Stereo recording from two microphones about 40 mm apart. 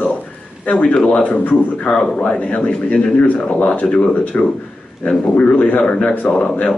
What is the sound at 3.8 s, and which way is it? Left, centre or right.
Speech, left.